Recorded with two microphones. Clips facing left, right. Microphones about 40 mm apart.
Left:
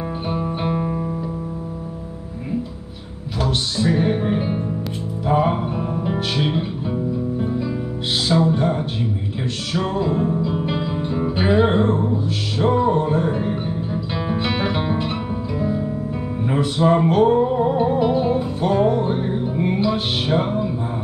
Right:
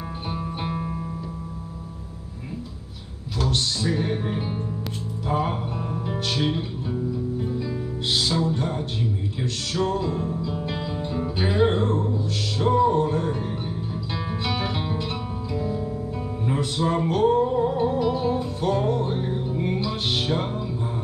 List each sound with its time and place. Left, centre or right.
0.3 s music: centre
3.3 s music: centre
8.3 s music: centre